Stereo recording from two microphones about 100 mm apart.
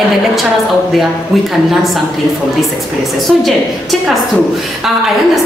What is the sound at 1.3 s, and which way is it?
Speech, centre (ahead or behind).